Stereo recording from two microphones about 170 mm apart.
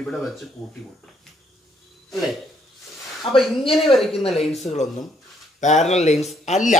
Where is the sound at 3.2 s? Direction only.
35° left (ahead or behind).